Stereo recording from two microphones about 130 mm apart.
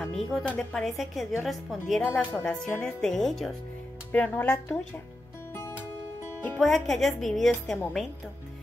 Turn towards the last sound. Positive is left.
turn(degrees=0)  # may be behind; listen again after turning